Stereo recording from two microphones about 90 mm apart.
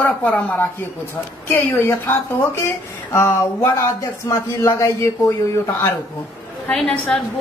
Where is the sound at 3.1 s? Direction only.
30° left (ahead or behind).